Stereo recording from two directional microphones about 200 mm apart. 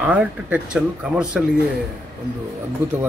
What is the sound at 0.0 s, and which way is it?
Speech, 5° right (ahead or behind).